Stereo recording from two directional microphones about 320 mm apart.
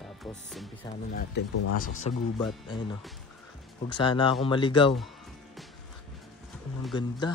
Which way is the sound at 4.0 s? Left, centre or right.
Centre.